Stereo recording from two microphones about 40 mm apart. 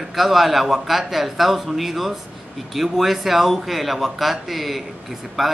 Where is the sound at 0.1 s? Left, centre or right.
Centre.